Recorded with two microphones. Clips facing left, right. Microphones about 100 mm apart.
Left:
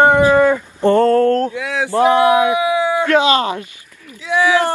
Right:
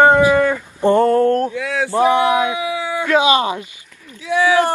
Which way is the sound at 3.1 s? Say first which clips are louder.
Right 2 dB; 15° right (ahead or behind).